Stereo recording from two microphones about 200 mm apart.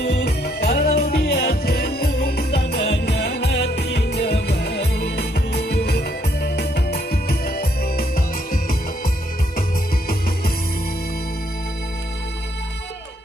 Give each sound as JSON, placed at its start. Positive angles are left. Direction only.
{"t": 0.0, "sound": "music", "side_deg": 55}